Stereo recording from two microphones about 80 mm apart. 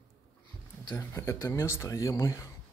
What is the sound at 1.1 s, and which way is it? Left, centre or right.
Speech, left.